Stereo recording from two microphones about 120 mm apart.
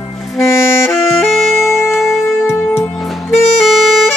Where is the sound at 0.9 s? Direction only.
Centre (ahead or behind).